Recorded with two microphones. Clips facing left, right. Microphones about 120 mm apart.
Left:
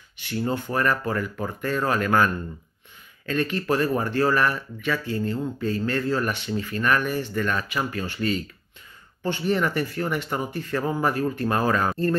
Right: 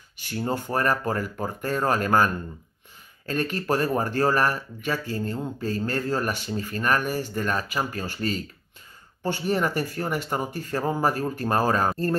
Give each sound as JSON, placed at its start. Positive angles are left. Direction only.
{"t": 0.2, "sound": "speech", "side_deg": -40}